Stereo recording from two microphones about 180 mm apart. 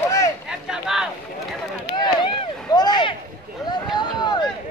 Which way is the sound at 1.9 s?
25° left (ahead or behind).